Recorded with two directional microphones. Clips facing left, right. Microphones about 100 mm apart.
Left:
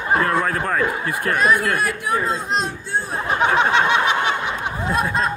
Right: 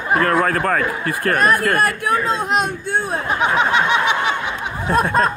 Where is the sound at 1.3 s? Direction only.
50° right (ahead or behind).